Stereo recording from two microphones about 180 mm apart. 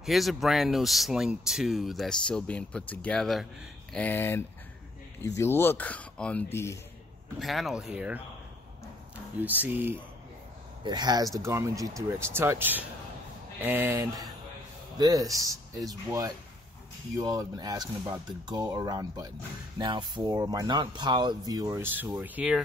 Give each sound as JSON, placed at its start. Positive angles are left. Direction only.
{"t": 0.0, "sound": "speech", "side_deg": 0}
{"t": 7.3, "sound": "speech", "side_deg": 0}
{"t": 10.8, "sound": "speech", "side_deg": -25}